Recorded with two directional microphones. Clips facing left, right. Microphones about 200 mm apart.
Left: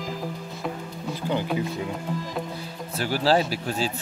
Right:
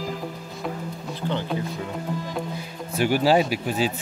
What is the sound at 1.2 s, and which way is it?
Music, 10° left (ahead or behind).